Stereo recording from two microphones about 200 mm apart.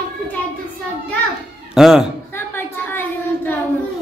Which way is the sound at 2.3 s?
10° left (ahead or behind).